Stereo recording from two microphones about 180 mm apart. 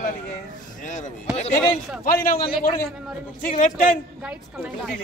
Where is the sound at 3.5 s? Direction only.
45° left (ahead or behind).